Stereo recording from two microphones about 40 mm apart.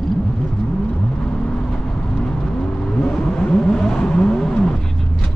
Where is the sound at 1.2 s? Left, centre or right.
Left.